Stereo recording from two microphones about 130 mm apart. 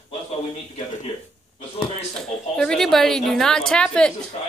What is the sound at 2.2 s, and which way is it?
A woman's voice, 5° left (ahead or behind).